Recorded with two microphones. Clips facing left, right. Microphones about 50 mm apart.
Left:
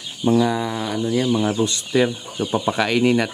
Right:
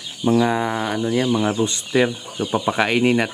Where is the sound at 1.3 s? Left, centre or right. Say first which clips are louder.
Even; right.